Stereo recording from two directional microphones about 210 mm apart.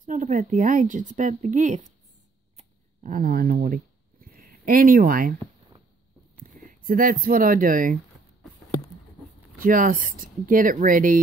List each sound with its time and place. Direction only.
0.0 s speech: 40° right (ahead or behind)
2.5 s a sound: 35° right (ahead or behind)
6.8 s speech: 40° right (ahead or behind)
9.6 s speech: 40° right (ahead or behind)